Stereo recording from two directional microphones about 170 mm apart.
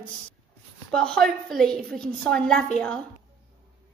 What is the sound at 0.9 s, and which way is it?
A woman's voice, 5° left (ahead or behind).